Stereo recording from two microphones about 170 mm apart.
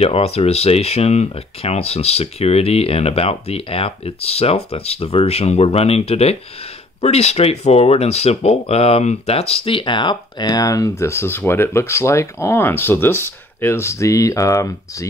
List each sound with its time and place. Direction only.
0.0 s speech: 35° left (ahead or behind); by 15.0 s 20° left (ahead or behind)